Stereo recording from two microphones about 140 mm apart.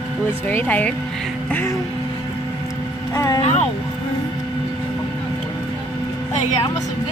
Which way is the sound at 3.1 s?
25° left (ahead or behind).